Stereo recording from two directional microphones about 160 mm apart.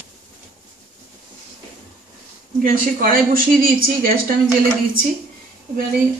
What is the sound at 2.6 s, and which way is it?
Speech, 60° right (ahead or behind).